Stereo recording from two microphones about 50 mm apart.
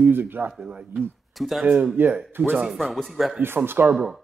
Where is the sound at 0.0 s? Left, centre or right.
Right.